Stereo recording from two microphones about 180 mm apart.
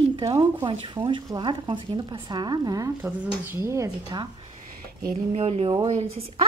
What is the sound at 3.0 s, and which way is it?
Speech, 10° right (ahead or behind).